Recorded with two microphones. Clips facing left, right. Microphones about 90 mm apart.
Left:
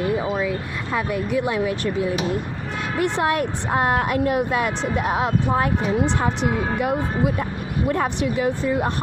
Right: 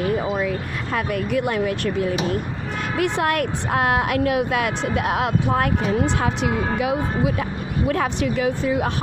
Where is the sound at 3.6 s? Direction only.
Centre (ahead or behind).